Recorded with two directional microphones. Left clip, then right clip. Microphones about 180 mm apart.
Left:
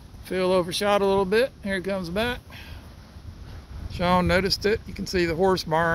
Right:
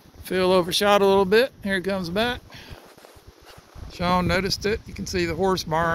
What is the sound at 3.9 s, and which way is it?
Speech, centre (ahead or behind).